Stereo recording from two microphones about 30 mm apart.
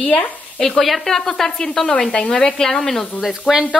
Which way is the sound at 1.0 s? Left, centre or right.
Centre.